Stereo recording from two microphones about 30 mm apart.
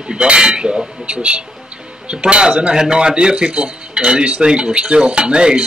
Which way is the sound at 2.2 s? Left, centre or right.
Right.